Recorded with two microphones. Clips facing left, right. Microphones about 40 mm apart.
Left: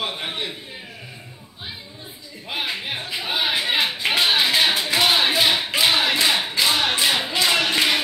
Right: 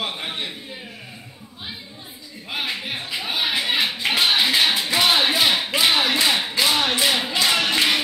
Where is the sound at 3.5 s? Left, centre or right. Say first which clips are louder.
Even; centre.